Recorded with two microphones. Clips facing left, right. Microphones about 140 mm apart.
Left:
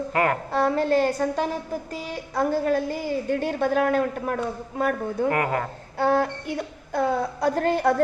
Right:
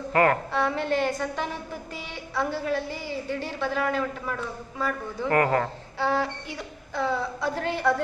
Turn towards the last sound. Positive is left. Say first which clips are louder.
# left 4 dB
turn(degrees=45)  # may be behind; listen again after turning